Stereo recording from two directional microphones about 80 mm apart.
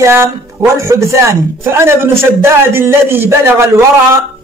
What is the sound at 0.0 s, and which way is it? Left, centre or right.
A man's voice, right.